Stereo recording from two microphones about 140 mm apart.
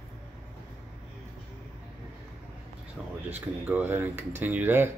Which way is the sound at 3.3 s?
10° right (ahead or behind).